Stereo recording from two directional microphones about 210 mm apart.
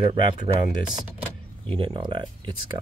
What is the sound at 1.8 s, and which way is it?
Speech, 20° right (ahead or behind).